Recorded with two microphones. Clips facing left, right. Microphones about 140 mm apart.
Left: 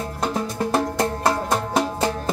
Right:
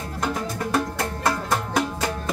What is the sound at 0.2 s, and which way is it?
Music, 30° left (ahead or behind).